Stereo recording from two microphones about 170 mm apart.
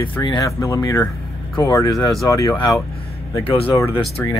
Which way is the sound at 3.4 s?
35° left (ahead or behind).